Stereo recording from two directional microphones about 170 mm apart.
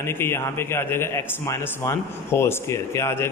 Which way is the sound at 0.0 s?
15° left (ahead or behind).